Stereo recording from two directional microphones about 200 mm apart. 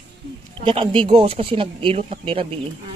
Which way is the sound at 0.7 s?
25° right (ahead or behind).